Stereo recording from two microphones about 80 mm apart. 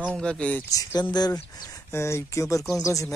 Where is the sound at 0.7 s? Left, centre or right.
Left.